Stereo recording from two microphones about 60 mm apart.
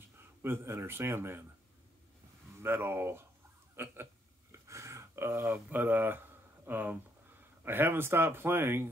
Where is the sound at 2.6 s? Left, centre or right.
Right.